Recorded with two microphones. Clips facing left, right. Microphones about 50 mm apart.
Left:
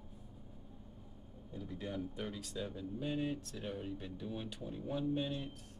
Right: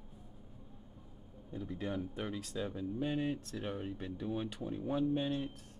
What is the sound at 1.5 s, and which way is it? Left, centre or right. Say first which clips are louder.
Speech: right 4 dB; centre.